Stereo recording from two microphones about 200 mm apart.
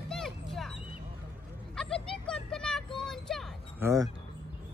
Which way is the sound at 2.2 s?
5° left (ahead or behind).